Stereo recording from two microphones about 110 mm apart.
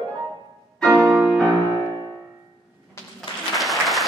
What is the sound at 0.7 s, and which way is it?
Music, 10° left (ahead or behind).